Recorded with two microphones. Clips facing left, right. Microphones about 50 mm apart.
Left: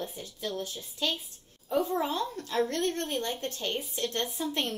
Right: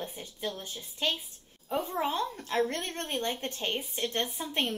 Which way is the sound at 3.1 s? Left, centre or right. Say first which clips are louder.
Even; right.